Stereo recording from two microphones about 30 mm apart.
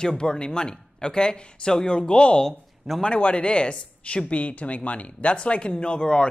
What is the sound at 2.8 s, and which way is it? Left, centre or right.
Speech, centre.